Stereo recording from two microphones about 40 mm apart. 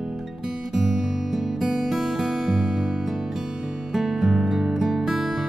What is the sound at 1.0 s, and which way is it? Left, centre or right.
Music, centre.